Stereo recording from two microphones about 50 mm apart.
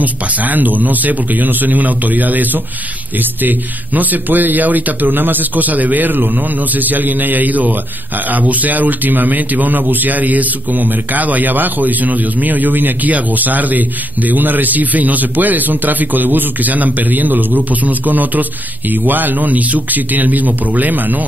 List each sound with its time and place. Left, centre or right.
0.0 s speech: right